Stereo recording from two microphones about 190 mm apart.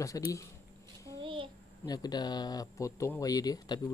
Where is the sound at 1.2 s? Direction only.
25° right (ahead or behind).